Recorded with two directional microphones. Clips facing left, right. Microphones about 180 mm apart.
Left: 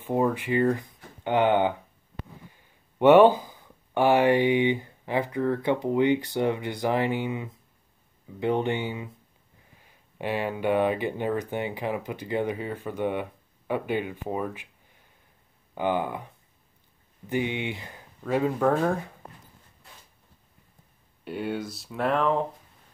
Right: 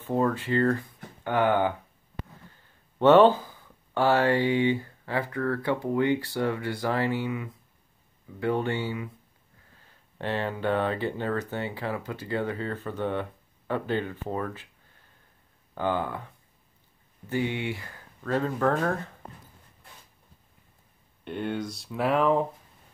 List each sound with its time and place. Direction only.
0.0 s speech: 15° left (ahead or behind)
15.7 s speech: 15° left (ahead or behind)
17.3 s speech: 20° left (ahead or behind)
21.2 s speech: 5° left (ahead or behind)